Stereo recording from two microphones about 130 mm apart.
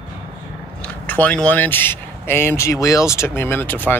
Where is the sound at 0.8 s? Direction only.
15° left (ahead or behind).